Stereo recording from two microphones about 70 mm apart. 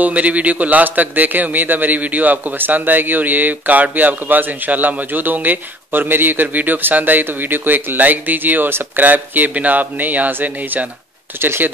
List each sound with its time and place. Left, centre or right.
0.0 s a man's voice: centre